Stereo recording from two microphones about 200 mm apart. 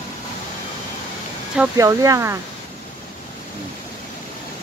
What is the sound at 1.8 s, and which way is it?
Speech, 15° right (ahead or behind).